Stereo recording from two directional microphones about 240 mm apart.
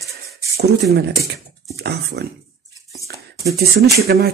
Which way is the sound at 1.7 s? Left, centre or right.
Right.